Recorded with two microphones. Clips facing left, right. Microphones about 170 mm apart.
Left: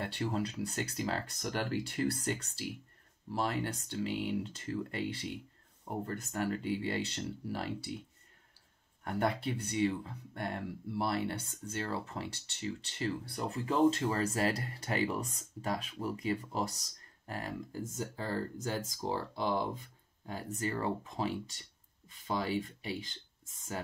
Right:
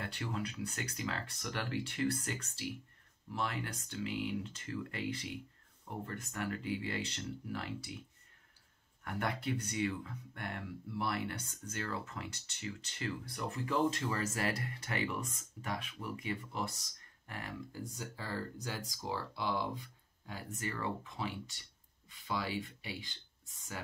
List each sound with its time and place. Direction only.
0.0 s speech: 30° left (ahead or behind)
9.0 s speech: 30° left (ahead or behind)
17.9 s speech: 45° left (ahead or behind)